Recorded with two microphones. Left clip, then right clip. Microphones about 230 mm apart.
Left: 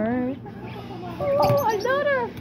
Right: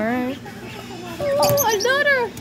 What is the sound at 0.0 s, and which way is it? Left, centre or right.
Chicken, centre.